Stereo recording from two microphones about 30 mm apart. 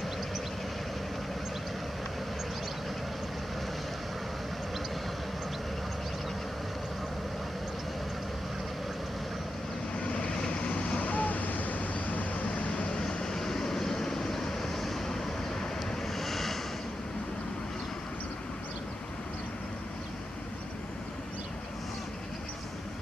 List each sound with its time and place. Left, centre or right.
9.9 s vehicle: left
11.1 s vehicle: left
13.3 s vehicle: centre